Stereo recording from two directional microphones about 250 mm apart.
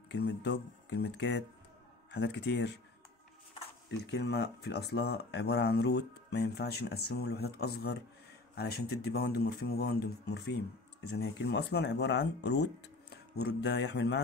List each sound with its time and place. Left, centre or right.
0.1 s speech: left
3.9 s speech: left